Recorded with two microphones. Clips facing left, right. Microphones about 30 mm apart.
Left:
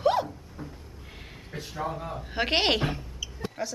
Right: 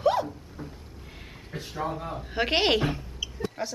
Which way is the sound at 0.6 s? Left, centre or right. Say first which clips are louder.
Even; centre.